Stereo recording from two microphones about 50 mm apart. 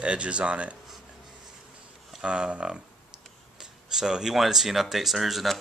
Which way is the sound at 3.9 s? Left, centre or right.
Centre.